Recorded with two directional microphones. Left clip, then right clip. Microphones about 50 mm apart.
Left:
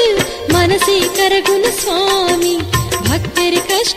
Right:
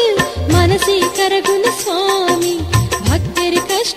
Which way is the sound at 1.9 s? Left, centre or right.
Right.